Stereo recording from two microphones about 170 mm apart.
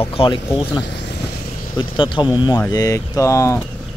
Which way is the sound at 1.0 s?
80° left.